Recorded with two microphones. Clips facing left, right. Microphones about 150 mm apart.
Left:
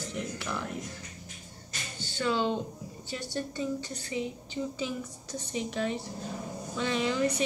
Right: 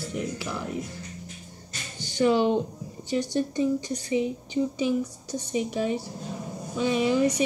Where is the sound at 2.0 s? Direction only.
15° right (ahead or behind).